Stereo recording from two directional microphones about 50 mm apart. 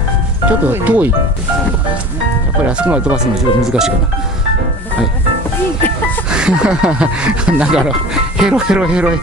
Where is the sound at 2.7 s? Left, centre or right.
Right.